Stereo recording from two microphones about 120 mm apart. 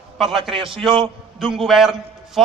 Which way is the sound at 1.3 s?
Centre (ahead or behind).